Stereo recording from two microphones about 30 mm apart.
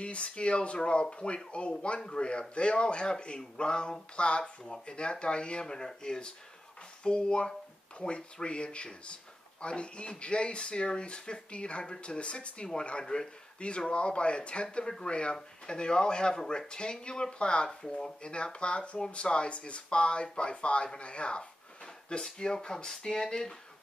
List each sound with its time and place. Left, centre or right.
0.0 s speech: left